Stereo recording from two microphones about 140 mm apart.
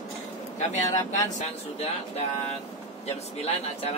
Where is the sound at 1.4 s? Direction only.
50° left (ahead or behind).